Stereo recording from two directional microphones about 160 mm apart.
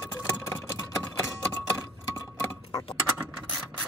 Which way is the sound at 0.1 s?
15° left (ahead or behind).